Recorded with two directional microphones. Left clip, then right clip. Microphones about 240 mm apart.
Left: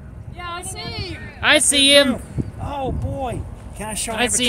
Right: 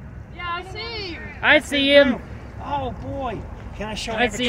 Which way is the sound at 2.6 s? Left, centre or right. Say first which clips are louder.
Even; left.